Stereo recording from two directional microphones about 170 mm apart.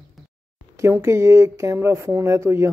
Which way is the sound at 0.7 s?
15° right (ahead or behind).